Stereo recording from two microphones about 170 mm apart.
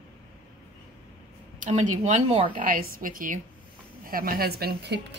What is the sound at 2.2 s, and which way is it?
Speech, 30° right (ahead or behind).